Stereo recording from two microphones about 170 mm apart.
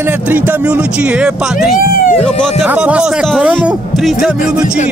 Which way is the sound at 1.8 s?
55° left (ahead or behind).